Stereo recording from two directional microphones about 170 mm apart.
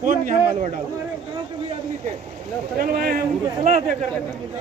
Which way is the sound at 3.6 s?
50° right (ahead or behind).